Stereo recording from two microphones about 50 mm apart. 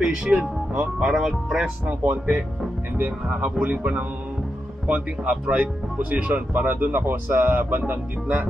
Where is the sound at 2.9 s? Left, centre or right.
Right.